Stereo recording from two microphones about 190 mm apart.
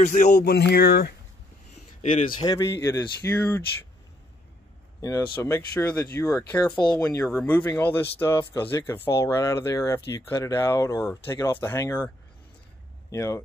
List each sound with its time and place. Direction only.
0.0 s speech: 40° left (ahead or behind)
0.5 s speech: 55° left (ahead or behind)
2.0 s a sound: 30° left (ahead or behind)
2.4 s speech: 20° left (ahead or behind)
5.0 s speech: 15° left (ahead or behind)
13.1 s speech: 15° left (ahead or behind)